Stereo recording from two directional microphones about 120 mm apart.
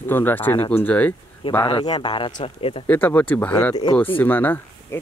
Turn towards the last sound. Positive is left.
turn(degrees=15)  # may be behind; listen again after turning